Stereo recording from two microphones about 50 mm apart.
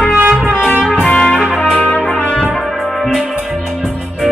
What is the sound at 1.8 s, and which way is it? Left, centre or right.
Trumpet, left.